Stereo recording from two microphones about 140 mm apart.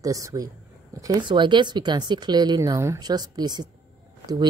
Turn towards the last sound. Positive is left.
turn(degrees=-30)  # may be behind; listen again after turning